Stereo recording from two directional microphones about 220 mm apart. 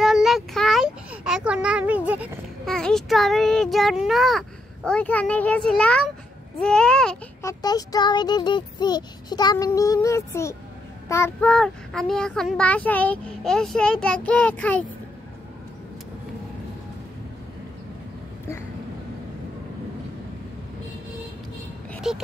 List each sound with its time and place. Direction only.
0.0 s child singing: centre (ahead or behind)
6.6 s speech: 5° left (ahead or behind)
7.6 s child singing: 15° left (ahead or behind)
11.1 s a child's voice: 10° left (ahead or behind)
21.9 s a sound: centre (ahead or behind)